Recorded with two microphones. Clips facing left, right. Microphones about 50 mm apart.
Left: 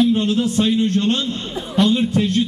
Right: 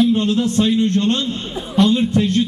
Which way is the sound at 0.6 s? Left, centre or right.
Centre.